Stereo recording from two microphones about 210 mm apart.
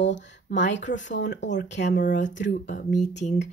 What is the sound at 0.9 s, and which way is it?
Speech, 55° left (ahead or behind).